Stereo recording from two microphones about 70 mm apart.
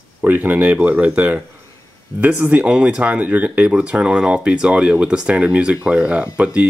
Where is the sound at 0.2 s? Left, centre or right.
Right.